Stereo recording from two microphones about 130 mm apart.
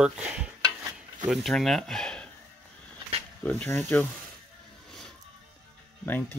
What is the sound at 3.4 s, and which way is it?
Speech, 10° left (ahead or behind).